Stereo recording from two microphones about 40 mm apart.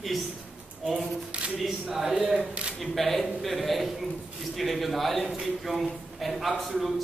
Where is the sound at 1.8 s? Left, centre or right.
Centre.